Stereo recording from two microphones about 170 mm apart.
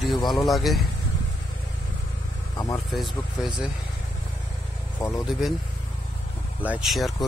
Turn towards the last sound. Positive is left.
turn(degrees=0)  # may be behind; listen again after turning